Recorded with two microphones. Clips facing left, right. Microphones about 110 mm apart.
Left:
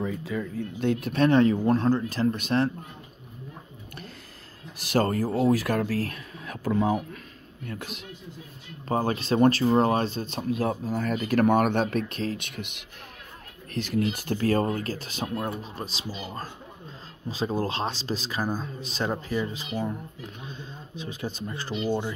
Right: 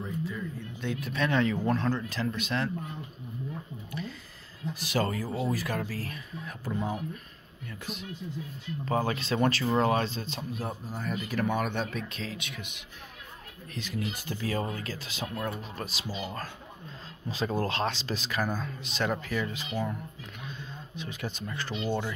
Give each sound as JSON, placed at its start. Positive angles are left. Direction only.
{"t": 0.0, "sound": "speech", "side_deg": 90}
{"t": 0.6, "sound": "speech", "side_deg": 50}
{"t": 4.9, "sound": "speech", "side_deg": 45}
{"t": 5.4, "sound": "speech", "side_deg": 70}
{"t": 7.6, "sound": "speech", "side_deg": 60}
{"t": 8.8, "sound": "speech", "side_deg": 35}
{"t": 10.5, "sound": "speech", "side_deg": 90}
{"t": 11.4, "sound": "speech", "side_deg": 55}
{"t": 13.7, "sound": "speech", "side_deg": 60}
{"t": 15.2, "sound": "speech", "side_deg": 30}
{"t": 17.5, "sound": "speech", "side_deg": 30}
{"t": 19.7, "sound": "speech", "side_deg": 20}
{"t": 20.4, "sound": "speech", "side_deg": 35}
{"t": 21.7, "sound": "speech", "side_deg": 15}